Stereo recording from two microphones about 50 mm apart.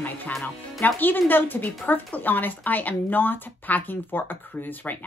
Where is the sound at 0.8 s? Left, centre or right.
Left.